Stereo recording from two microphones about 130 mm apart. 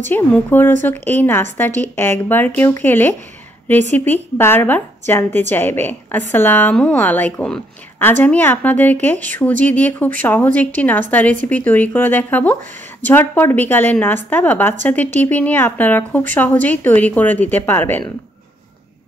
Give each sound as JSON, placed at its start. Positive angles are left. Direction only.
{"t": 0.1, "sound": "a woman's voice", "side_deg": 15}
{"t": 4.4, "sound": "a woman's voice", "side_deg": 15}